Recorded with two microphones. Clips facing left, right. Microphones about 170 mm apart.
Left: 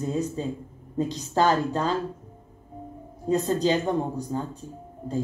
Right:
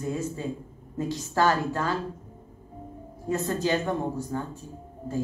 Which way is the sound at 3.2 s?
15° left (ahead or behind).